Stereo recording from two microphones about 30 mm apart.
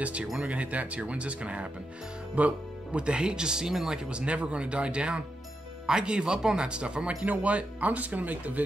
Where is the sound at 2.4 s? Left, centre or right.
Right.